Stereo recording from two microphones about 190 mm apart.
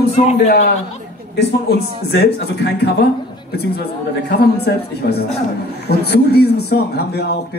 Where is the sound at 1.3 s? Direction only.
60° left (ahead or behind).